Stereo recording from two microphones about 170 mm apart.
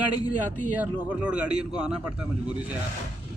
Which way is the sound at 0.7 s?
10° right (ahead or behind).